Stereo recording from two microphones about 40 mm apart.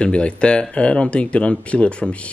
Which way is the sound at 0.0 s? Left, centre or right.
Left.